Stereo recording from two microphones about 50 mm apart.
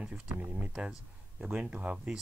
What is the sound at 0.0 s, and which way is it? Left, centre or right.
Speech, right.